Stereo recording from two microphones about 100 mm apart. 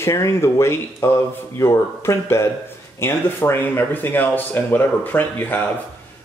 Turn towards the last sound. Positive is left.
turn(degrees=20)  # may be behind; listen again after turning